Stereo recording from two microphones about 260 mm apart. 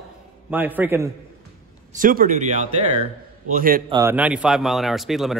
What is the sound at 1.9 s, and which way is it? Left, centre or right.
A man's voice, right.